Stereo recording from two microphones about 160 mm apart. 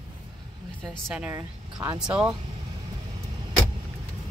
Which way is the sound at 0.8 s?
5° left (ahead or behind).